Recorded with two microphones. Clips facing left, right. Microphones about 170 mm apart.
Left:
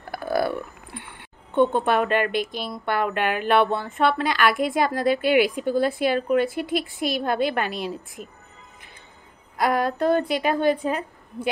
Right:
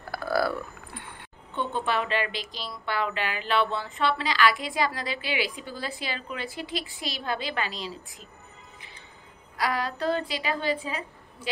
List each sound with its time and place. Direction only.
0.1 s a sound: 20° left (ahead or behind)
1.5 s speech: 50° left (ahead or behind)
9.6 s speech: 50° left (ahead or behind)